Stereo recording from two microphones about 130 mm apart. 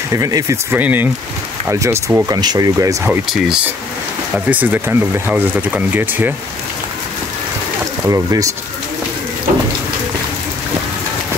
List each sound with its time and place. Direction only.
0.1 s speech: 25° right (ahead or behind)
0.7 s speech: 15° right (ahead or behind)
3.1 s speech: 5° right (ahead or behind)
8.0 s speech: 25° right (ahead or behind)